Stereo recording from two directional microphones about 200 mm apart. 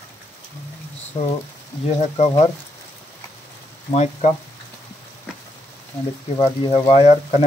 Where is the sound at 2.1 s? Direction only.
35° left (ahead or behind).